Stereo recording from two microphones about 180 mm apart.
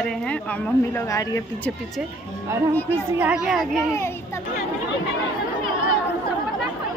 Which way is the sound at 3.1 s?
10° right (ahead or behind).